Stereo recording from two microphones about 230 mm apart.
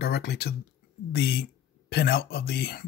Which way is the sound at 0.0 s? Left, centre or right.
Left.